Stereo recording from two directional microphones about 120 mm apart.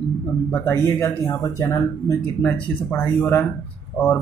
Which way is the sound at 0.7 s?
20° left (ahead or behind).